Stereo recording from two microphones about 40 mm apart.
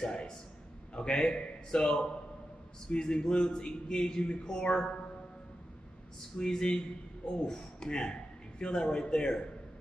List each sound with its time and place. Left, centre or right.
0.0 s a sound: left
0.9 s speech: centre
2.9 s a man's voice: left
6.3 s a man's voice: centre